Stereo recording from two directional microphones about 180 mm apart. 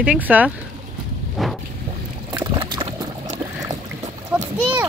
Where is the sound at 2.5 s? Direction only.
30° right (ahead or behind).